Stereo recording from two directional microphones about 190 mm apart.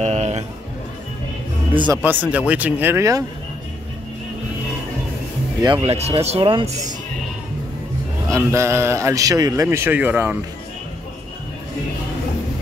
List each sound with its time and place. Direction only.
0.0 s music: 35° right (ahead or behind)
2.0 s a man's voice: 10° right (ahead or behind)
5.6 s speech: 25° right (ahead or behind)
8.3 s a man's voice: 15° right (ahead or behind)